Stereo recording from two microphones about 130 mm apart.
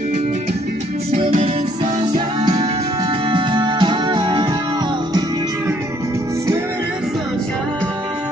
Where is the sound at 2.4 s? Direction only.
30° right (ahead or behind).